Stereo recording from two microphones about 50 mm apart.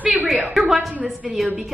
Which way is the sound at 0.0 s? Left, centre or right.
Right.